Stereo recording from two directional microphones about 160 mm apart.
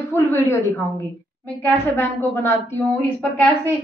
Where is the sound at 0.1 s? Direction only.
15° left (ahead or behind).